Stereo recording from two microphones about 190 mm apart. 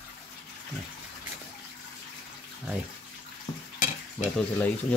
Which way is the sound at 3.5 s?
25° left (ahead or behind).